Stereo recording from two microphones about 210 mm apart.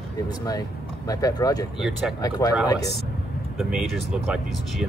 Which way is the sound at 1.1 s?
15° left (ahead or behind).